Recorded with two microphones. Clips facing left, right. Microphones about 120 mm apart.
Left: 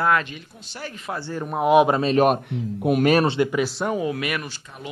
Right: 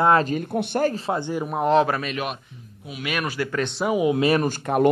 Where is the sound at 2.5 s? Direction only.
65° left (ahead or behind).